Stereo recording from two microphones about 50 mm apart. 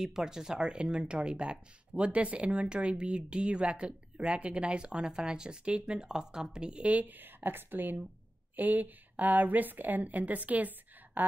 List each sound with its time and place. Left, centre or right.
0.0 s a woman's voice: centre; by 10.7 s right
11.2 s speech: right